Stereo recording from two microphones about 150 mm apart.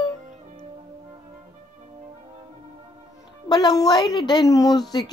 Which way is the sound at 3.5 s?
25° left (ahead or behind).